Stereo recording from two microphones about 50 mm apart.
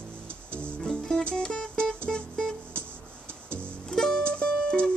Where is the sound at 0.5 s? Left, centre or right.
Right.